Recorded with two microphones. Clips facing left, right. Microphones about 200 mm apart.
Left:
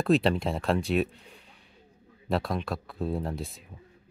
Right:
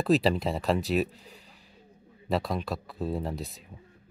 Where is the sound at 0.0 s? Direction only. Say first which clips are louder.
Even; centre (ahead or behind).